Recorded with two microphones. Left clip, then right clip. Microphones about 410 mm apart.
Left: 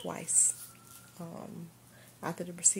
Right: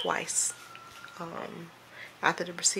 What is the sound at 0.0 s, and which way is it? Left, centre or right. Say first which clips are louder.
Speech: right 4 dB; left.